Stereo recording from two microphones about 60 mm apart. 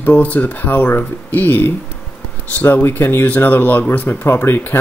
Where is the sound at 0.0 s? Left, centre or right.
Left.